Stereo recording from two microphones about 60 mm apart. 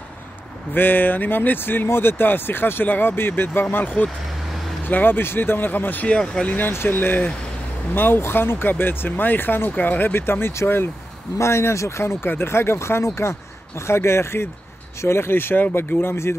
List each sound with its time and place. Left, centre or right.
0.7 s speech: left
6.0 s speech: centre
6.7 s speech: left